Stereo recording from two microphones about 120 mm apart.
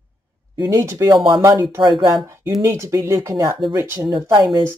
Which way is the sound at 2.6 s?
25° right (ahead or behind).